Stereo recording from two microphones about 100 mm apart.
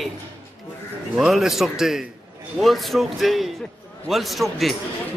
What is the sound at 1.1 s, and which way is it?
A man's voice, 5° right (ahead or behind).